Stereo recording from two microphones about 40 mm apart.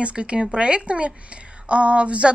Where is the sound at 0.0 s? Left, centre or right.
Right.